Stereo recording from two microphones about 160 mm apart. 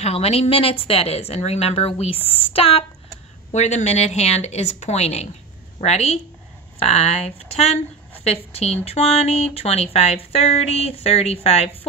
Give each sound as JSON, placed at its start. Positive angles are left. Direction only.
{"t": 0.0, "sound": "speech", "side_deg": 40}